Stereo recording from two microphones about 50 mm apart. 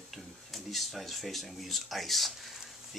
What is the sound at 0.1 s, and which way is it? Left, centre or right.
Speech, centre.